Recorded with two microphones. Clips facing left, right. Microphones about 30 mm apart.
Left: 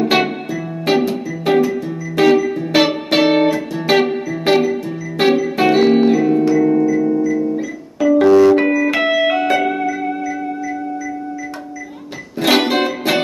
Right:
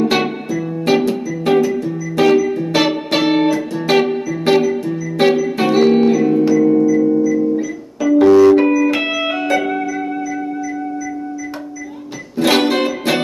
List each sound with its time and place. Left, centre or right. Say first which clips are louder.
0.0 s music: left 1 dB; centre
7.0 s organ: right 2 dB; centre
7.3 s piano: right 2 dB; centre
8.8 s music: left 2 dB; centre
12.4 s music: even; centre